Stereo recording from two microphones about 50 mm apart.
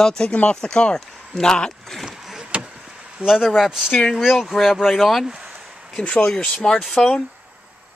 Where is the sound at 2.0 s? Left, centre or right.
Centre.